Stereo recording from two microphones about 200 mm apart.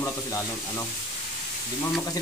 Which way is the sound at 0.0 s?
10° left (ahead or behind).